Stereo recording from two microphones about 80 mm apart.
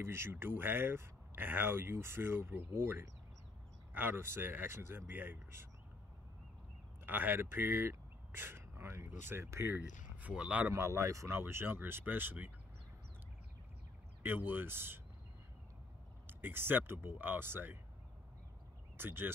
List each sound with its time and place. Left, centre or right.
0.0 s speech: right
7.1 s speech: right
10.7 s speech: right
14.2 s speech: right
16.3 s speech: right
18.9 s speech: right